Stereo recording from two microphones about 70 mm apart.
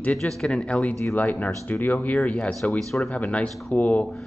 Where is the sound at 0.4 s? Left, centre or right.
Centre.